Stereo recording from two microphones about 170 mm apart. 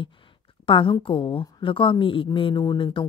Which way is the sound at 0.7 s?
30° left (ahead or behind).